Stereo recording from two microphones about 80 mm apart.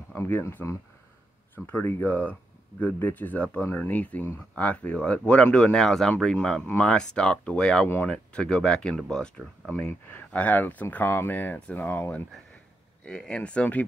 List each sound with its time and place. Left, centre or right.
0.2 s speech: left